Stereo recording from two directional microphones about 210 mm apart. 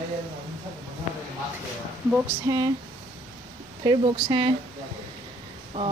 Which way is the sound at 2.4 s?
15° right (ahead or behind).